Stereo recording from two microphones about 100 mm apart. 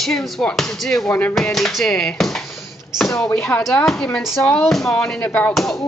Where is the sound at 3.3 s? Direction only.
10° left (ahead or behind).